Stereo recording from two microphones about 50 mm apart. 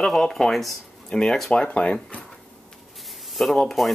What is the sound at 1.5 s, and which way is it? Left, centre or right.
Speech, left.